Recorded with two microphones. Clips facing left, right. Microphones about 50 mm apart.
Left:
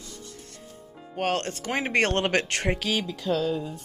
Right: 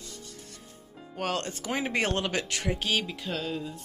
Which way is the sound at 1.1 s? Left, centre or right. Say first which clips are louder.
Left 4 dB; left.